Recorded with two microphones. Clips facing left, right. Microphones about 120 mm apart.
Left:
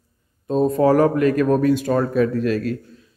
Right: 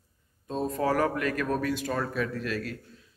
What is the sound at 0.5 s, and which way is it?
Speech, 40° left (ahead or behind).